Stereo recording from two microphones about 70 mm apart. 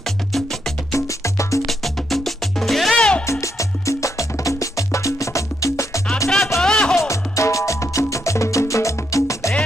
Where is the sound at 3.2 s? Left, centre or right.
Left.